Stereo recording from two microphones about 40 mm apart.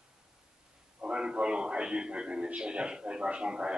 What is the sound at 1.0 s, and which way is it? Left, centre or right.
A man's voice, right.